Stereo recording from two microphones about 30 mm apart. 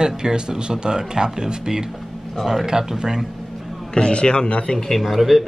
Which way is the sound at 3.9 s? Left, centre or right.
Left.